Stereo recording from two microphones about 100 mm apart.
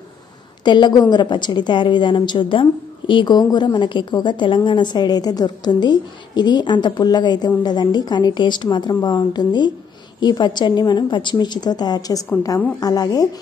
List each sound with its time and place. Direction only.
0.7 s a woman's voice: 50° left (ahead or behind)